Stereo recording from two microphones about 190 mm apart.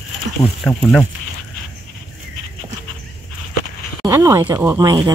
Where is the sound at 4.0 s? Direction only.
15° right (ahead or behind).